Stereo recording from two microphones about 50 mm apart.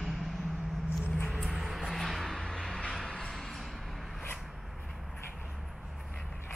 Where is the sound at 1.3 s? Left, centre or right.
Centre.